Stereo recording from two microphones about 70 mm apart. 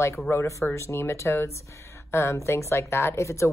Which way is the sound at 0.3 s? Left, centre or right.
Left.